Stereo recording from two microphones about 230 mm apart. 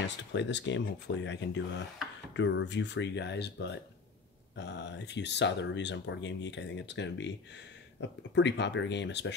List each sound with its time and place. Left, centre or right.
0.0 s speech: left